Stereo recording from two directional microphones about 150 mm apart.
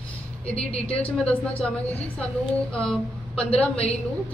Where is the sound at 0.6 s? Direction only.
40° left (ahead or behind).